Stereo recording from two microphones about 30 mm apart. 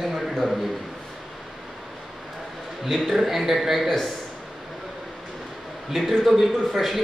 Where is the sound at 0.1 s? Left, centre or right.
Centre.